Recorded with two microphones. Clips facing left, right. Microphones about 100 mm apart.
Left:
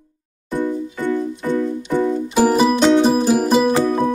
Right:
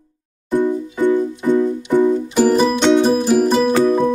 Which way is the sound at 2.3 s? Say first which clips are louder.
Left 2 dB; 10° left (ahead or behind).